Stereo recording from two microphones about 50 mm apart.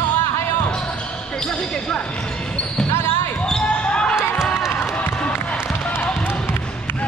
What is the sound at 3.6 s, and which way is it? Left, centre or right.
Basketball bounce, left.